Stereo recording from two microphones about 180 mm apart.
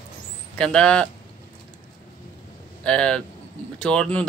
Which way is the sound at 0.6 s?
5° left (ahead or behind).